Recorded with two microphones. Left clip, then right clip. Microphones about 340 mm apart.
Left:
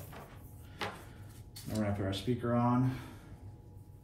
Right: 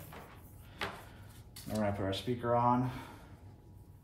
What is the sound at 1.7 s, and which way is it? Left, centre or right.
Speech, centre.